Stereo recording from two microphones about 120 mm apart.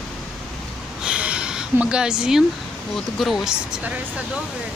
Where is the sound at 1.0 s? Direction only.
10° right (ahead or behind).